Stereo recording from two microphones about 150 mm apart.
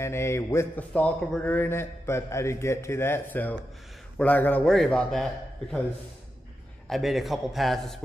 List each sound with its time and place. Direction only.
0.0 s a man's voice: 20° left (ahead or behind)
6.9 s a man's voice: centre (ahead or behind)